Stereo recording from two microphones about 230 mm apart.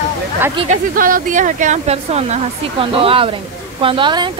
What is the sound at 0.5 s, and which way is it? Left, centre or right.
Speech, right.